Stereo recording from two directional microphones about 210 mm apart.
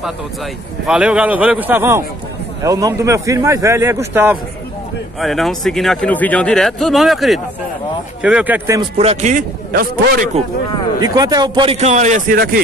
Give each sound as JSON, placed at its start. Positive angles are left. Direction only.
{"t": 0.8, "sound": "speech", "side_deg": -5}
{"t": 8.9, "sound": "a man's voice", "side_deg": -30}
{"t": 11.0, "sound": "a man's voice", "side_deg": -20}